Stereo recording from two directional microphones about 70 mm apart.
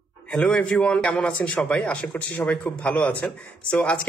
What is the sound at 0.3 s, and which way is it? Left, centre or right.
A man's voice, centre.